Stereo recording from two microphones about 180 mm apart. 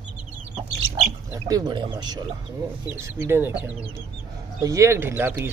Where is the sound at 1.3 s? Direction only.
20° right (ahead or behind).